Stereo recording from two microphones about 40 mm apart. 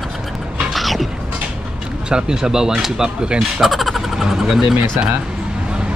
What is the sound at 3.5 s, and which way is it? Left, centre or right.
Speech, centre.